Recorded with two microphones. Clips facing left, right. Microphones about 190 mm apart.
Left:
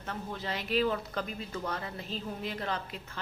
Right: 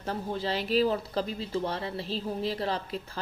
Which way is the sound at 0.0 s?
35° right (ahead or behind).